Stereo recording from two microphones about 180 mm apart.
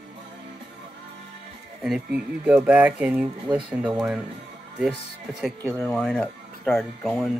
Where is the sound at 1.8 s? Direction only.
5° right (ahead or behind).